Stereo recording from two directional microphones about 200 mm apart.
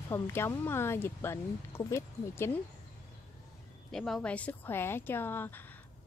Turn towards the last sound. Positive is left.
turn(degrees=10)  # may be behind; listen again after turning